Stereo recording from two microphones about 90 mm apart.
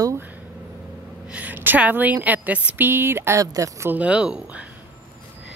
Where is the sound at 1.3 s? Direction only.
20° right (ahead or behind).